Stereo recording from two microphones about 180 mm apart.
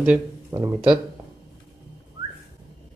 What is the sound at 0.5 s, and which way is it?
Speech, 20° right (ahead or behind).